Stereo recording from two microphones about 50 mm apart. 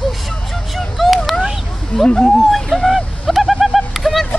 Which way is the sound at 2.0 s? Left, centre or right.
Centre.